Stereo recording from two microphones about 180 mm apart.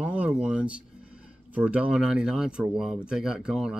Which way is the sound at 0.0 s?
5° right (ahead or behind).